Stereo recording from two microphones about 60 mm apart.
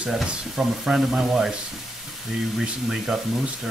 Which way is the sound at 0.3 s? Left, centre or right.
Centre.